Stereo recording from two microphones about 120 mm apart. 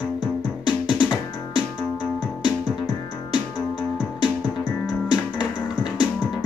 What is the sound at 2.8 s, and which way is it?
Music, 40° left (ahead or behind).